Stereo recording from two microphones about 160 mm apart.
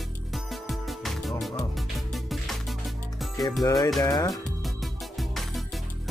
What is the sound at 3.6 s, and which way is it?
Speech, 20° left (ahead or behind).